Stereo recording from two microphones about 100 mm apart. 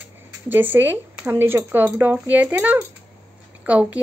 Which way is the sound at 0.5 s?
20° right (ahead or behind).